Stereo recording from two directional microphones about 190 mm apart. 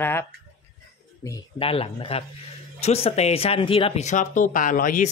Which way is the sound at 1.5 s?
30° left (ahead or behind).